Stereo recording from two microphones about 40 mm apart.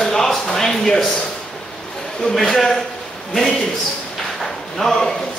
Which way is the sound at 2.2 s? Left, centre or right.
Centre.